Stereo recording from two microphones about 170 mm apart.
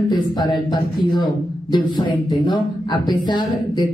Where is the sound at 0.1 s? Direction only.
25° left (ahead or behind).